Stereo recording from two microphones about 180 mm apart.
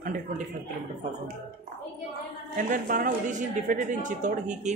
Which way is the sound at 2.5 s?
50° right (ahead or behind).